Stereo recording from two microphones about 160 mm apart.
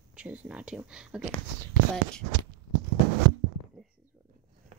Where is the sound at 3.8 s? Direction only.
Centre (ahead or behind).